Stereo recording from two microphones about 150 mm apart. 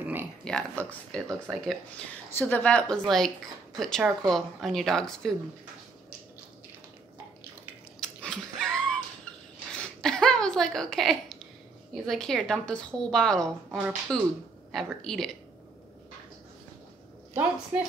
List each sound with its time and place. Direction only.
0.0 s a sound: 15° right (ahead or behind)
0.5 s a woman's voice: 5° left (ahead or behind)
8.2 s a sound: 5° left (ahead or behind)
11.9 s a woman's voice: centre (ahead or behind)
13.7 s speech: 10° right (ahead or behind)
14.7 s a woman's voice: centre (ahead or behind)
17.7 s speech: 10° right (ahead or behind)